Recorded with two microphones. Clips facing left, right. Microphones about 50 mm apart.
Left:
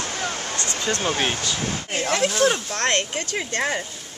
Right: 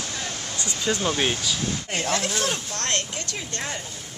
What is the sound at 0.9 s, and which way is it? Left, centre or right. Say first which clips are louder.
Speech: even; left.